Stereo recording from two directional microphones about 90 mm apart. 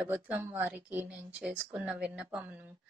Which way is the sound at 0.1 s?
25° right (ahead or behind).